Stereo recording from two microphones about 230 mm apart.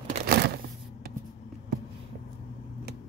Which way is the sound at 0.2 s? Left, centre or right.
Right.